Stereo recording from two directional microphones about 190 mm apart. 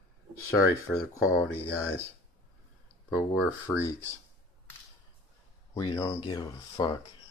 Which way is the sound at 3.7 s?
10° left (ahead or behind).